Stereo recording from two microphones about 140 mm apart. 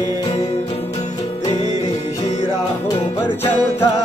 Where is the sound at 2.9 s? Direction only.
15° left (ahead or behind).